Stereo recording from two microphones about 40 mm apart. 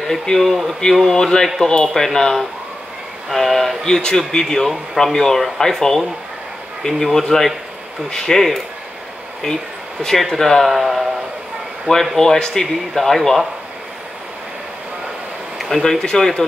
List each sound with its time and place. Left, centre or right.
0.0 s speech: centre
3.3 s speech: centre
3.8 s speech: centre
10.1 s speech: centre
10.7 s a man's voice: centre
12.2 s speech: centre
15.7 s speech: centre